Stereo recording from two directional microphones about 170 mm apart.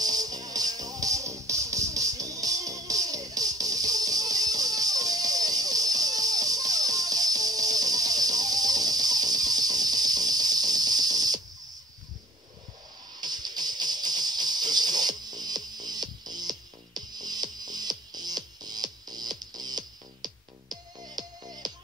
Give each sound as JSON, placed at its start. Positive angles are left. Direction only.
{"t": 0.0, "sound": "music", "side_deg": -20}
{"t": 13.2, "sound": "music", "side_deg": -25}